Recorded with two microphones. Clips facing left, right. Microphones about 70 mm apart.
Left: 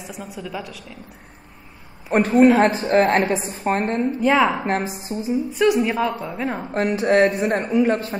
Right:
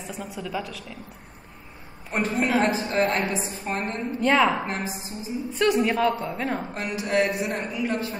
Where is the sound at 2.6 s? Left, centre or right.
Left.